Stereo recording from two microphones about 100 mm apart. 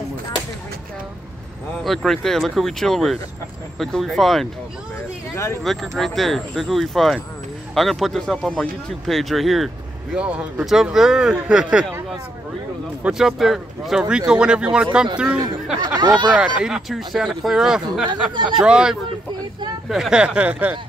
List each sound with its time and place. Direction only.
1.9 s speech: 5° left (ahead or behind)
5.3 s speech: 25° left (ahead or behind)
5.6 s speech: centre (ahead or behind)
10.1 s speech: 15° right (ahead or behind)
13.0 s speech: 5° right (ahead or behind)
15.8 s speech: 45° right (ahead or behind)
16.3 s speech: 10° right (ahead or behind)